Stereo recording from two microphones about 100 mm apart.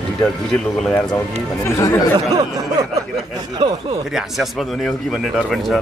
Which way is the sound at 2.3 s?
40° right (ahead or behind).